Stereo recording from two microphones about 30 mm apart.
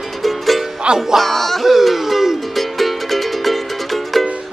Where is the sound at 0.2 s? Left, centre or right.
Centre.